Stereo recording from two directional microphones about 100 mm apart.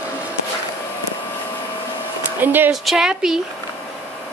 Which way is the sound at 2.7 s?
5° right (ahead or behind).